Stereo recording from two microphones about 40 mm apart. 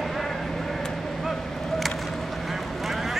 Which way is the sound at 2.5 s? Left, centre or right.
Centre.